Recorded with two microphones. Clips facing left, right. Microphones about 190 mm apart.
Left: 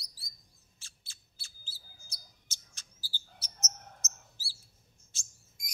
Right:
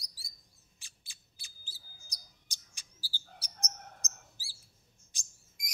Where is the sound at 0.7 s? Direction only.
15° right (ahead or behind).